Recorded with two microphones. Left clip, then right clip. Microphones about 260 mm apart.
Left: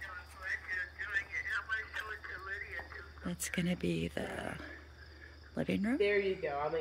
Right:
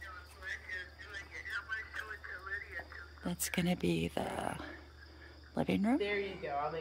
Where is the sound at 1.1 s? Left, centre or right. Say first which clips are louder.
Left 6 dB; centre.